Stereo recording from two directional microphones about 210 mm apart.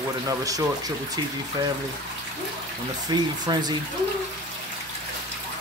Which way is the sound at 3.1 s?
20° right (ahead or behind).